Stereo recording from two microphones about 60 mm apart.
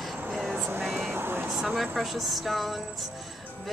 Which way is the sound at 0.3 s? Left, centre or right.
Centre.